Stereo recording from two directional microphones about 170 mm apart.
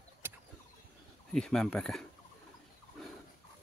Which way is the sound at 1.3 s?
5° left (ahead or behind).